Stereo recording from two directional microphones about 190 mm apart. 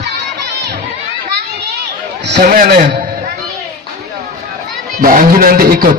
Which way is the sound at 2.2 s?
55° right (ahead or behind).